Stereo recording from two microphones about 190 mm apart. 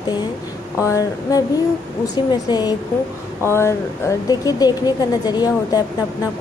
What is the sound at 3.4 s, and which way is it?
A woman's voice, 15° left (ahead or behind).